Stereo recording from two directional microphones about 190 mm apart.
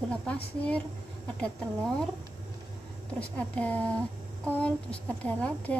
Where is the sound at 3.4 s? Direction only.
5° left (ahead or behind).